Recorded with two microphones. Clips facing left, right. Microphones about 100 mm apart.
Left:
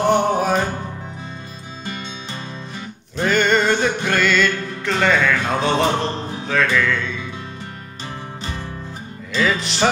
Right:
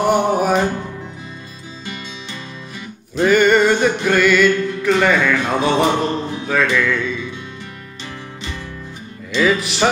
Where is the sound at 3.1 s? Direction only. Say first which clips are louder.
Right 5 dB; 5° right (ahead or behind).